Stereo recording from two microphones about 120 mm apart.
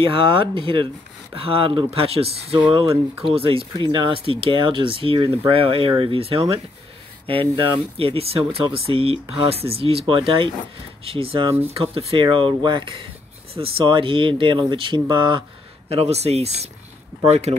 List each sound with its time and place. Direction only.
0.0 s speech: 45° right (ahead or behind)
15.9 s speech: 60° right (ahead or behind)